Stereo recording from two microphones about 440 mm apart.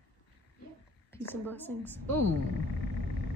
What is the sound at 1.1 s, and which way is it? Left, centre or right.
Speech, centre.